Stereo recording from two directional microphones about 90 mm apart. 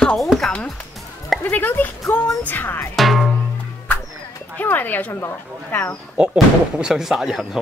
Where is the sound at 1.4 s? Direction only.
20° left (ahead or behind).